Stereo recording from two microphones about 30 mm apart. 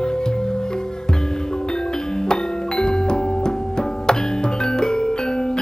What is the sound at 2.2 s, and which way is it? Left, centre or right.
Music, left.